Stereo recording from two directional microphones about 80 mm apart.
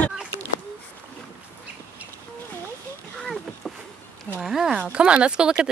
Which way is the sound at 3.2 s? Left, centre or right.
Centre.